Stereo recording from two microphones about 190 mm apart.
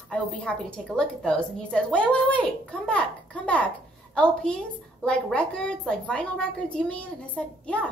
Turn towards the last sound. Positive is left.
turn(degrees=5)  # may be behind; listen again after turning